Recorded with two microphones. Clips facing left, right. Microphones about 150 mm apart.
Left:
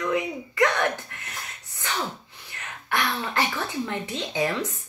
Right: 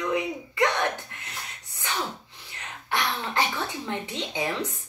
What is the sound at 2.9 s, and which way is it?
Speech, 20° right (ahead or behind).